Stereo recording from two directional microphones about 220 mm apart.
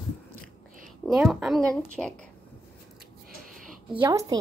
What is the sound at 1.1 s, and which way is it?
Speech, 5° right (ahead or behind).